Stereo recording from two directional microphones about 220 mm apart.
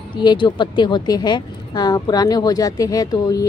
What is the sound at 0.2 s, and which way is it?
Speech, 20° left (ahead or behind).